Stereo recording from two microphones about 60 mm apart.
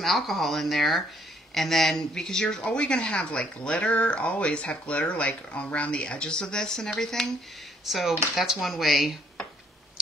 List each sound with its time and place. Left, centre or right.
0.0 s speech: centre
7.8 s speech: centre